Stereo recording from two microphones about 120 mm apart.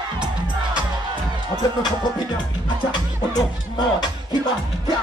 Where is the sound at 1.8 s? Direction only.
35° left (ahead or behind).